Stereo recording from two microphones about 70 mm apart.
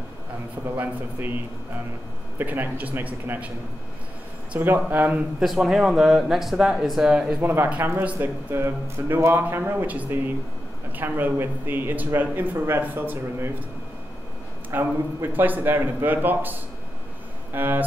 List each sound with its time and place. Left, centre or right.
0.7 s speech: right
4.6 s speech: right
5.4 s speech: centre
7.3 s speech: right
8.0 s speech: centre
8.5 s speech: right
9.5 s speech: right
14.7 s speech: right